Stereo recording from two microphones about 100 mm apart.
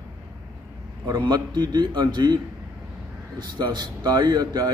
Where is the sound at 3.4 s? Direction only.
50° right (ahead or behind).